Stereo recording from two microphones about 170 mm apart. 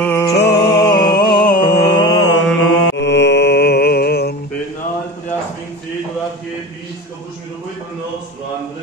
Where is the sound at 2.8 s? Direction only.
90° left; by 4.3 s 70° left (ahead or behind).